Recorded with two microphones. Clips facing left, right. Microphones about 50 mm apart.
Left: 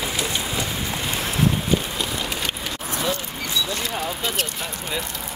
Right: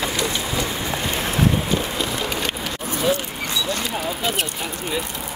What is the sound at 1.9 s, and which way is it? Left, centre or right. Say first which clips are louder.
Vehicle: right 3 dB; centre.